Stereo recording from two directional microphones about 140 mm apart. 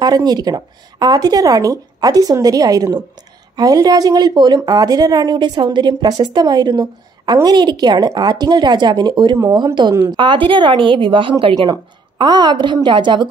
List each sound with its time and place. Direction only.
0.0 s a woman's voice: 30° right (ahead or behind)